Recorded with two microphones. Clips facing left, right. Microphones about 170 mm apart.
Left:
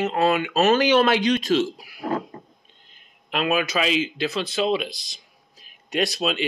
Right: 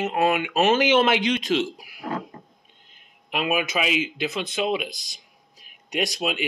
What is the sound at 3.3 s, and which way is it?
Speech, 15° right (ahead or behind).